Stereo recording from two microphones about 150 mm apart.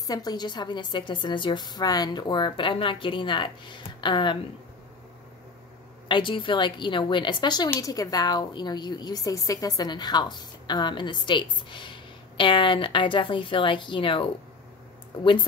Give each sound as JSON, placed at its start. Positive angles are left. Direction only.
{"t": 0.0, "sound": "a woman's voice", "side_deg": 25}
{"t": 6.0, "sound": "a woman's voice", "side_deg": 35}